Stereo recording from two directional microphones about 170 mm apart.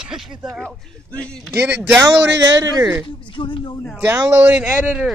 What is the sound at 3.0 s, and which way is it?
Speech, 30° left (ahead or behind).